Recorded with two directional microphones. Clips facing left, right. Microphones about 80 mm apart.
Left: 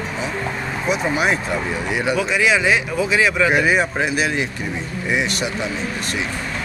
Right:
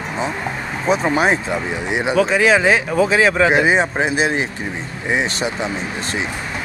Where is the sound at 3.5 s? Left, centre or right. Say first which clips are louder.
Right 2 dB; right.